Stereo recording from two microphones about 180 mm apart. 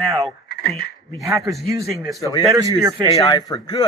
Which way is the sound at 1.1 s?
15° right (ahead or behind).